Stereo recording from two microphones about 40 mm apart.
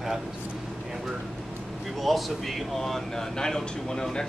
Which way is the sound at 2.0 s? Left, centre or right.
Centre.